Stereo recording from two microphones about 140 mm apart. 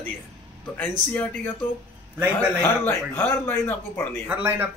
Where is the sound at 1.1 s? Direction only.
10° left (ahead or behind).